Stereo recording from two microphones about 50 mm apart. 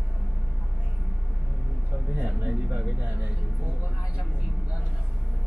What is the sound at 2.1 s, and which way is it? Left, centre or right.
Speech, right.